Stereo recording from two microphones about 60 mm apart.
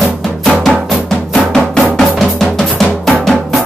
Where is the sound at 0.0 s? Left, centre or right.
Centre.